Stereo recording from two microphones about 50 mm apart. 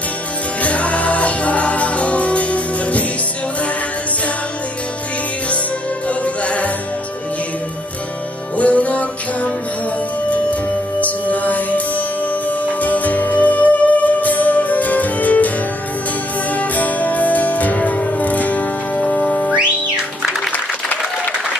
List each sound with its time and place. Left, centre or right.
0.6 s music: left
6.0 s music: left
8.5 s music: left
16.5 s music: left